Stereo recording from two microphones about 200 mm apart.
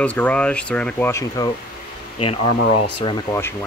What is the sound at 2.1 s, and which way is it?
Speech, 30° left (ahead or behind).